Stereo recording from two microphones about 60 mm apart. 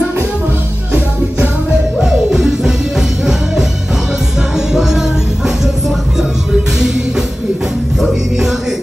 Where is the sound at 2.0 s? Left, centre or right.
Centre.